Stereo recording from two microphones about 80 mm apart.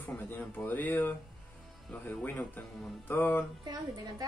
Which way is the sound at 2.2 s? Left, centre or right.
Left.